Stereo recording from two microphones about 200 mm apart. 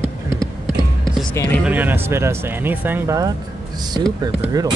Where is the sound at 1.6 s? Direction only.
10° right (ahead or behind).